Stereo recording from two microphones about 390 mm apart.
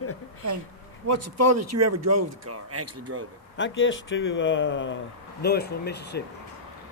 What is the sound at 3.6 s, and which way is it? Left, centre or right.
Speech, left.